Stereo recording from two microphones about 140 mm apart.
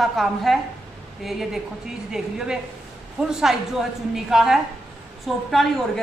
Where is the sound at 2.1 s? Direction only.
5° right (ahead or behind).